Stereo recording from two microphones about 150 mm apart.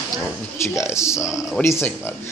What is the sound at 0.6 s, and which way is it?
A man's voice, 20° left (ahead or behind).